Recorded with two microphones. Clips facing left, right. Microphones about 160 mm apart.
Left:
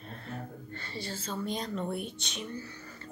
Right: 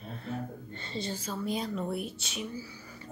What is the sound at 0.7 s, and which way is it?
A woman's voice, 20° right (ahead or behind).